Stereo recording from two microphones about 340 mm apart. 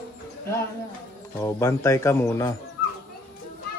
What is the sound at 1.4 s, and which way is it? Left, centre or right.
A man's voice, centre.